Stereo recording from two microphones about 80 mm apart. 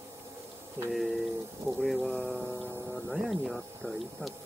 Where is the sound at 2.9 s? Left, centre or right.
Centre.